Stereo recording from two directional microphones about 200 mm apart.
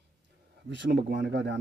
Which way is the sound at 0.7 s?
60° right (ahead or behind).